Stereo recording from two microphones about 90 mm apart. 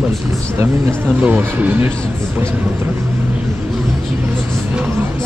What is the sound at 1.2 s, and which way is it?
Speech, 20° right (ahead or behind).